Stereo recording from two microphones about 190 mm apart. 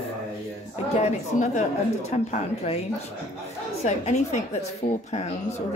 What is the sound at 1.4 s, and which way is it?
Speech, 40° left (ahead or behind).